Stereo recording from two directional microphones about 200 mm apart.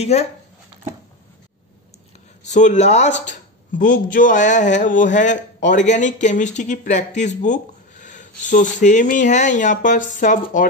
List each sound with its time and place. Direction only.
0.0 s speech: 35° left (ahead or behind)
2.4 s speech: 35° left (ahead or behind)